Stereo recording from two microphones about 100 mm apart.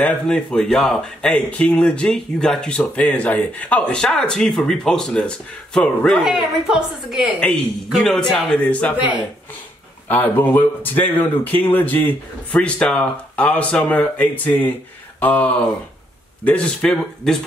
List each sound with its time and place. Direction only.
0.0 s a man's voice: 10° left (ahead or behind)
6.2 s a woman's voice: 5° right (ahead or behind); by 8.9 s 15° left (ahead or behind)
10.0 s a man's voice: 20° left (ahead or behind)